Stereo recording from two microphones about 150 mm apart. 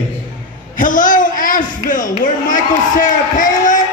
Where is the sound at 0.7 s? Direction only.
65° left (ahead or behind).